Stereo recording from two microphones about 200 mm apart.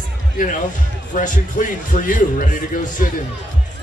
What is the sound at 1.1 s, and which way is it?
Speech, 40° left (ahead or behind).